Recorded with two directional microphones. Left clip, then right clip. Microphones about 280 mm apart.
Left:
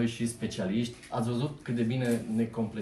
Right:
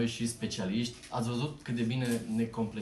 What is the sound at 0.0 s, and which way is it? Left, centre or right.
Speech, centre.